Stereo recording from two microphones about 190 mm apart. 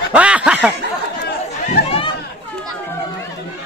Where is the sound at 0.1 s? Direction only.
5° right (ahead or behind).